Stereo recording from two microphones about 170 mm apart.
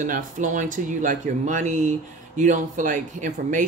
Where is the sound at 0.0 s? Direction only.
50° right (ahead or behind).